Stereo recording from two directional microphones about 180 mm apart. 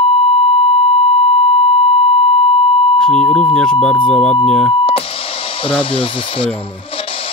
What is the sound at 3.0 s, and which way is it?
Speech, 5° left (ahead or behind).